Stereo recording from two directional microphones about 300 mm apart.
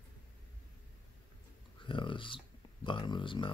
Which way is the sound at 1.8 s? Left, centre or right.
Centre.